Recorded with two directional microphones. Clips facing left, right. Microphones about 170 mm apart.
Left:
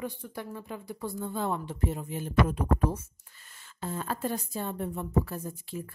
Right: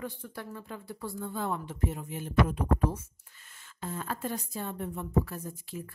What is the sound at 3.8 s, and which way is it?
A woman's voice, 30° left (ahead or behind).